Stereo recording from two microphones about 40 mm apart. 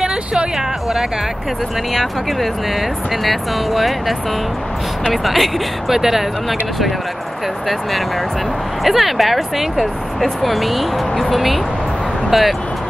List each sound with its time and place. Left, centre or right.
0.0 s a sound: right
3.3 s speech: centre
5.1 s speech: centre
8.8 s speech: centre